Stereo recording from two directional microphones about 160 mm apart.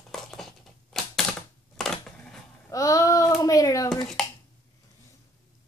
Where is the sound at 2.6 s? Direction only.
20° left (ahead or behind).